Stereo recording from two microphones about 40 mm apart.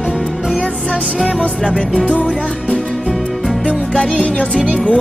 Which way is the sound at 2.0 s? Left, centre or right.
Left.